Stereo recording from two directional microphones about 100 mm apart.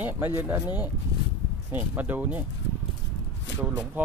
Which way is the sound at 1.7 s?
20° right (ahead or behind).